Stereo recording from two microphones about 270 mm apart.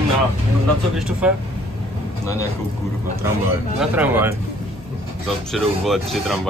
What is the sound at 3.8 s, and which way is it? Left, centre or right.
Speech, centre.